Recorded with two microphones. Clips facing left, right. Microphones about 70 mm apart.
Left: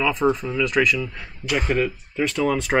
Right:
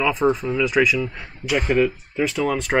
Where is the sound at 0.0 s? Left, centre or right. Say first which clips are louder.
Right 1 dB; centre.